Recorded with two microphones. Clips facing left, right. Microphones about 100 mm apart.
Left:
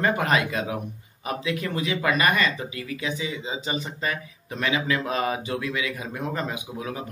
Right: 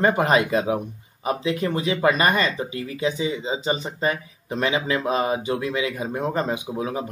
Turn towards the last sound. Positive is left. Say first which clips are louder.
# right 5 dB
turn(degrees=-30)  # may be behind; listen again after turning